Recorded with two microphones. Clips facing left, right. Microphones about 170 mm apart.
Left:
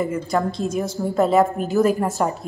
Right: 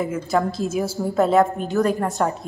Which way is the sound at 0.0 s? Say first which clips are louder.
Even; centre (ahead or behind).